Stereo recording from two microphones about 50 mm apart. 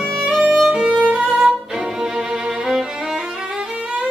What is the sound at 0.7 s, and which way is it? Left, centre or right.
Violin, right.